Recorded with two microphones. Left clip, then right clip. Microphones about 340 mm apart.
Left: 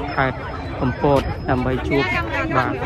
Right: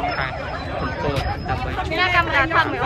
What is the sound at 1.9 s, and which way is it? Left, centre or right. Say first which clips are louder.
Speech: right 5 dB; centre.